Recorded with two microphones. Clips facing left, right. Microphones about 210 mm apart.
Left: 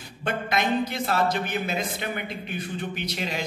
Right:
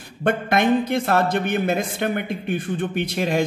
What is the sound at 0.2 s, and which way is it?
A man's voice, 55° right (ahead or behind).